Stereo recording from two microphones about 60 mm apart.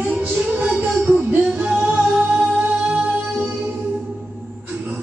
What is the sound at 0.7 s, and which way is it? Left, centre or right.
Music, right.